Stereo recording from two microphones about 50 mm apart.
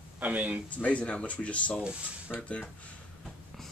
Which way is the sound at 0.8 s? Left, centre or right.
Left.